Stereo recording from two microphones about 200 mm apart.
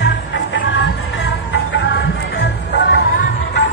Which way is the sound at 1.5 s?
60° left (ahead or behind).